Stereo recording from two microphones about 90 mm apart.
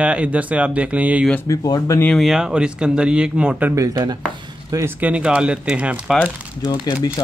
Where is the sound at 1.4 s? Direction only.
40° left (ahead or behind).